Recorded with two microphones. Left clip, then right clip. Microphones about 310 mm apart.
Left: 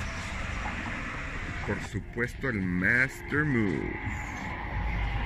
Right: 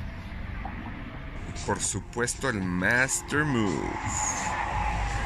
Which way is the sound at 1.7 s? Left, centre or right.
Right.